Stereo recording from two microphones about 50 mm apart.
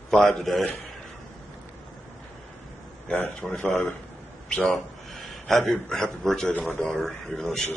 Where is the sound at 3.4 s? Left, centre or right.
Left.